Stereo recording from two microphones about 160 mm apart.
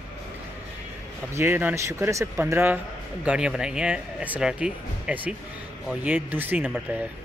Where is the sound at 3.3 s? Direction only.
5° right (ahead or behind).